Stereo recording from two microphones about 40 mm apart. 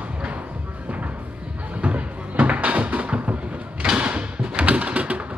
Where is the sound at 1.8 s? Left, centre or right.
Right.